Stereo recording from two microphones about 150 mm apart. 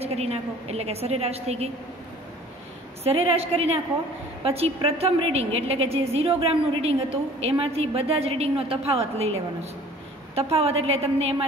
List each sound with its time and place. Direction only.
0.0 s a woman's voice: 45° right (ahead or behind)
3.0 s a woman's voice: 40° right (ahead or behind)